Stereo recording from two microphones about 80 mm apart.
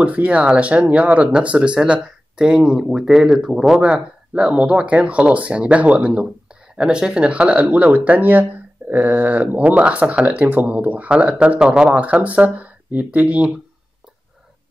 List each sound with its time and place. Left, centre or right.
0.0 s speech: centre